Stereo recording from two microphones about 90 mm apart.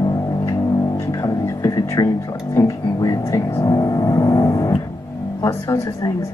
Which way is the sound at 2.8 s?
45° left (ahead or behind).